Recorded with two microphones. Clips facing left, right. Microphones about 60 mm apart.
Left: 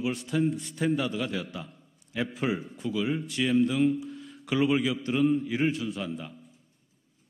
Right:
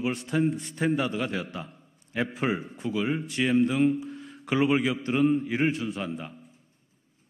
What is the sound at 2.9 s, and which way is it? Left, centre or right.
A man's voice, right.